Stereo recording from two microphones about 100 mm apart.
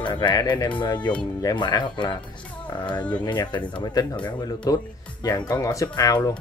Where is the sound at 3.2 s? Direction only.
45° left (ahead or behind).